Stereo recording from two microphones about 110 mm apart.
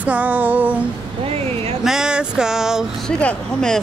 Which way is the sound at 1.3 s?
65° right (ahead or behind).